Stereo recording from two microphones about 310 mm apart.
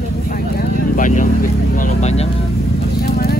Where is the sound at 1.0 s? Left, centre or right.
Left.